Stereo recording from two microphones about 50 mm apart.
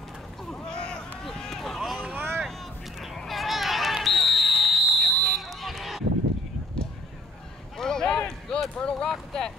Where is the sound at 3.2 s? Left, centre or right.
Centre.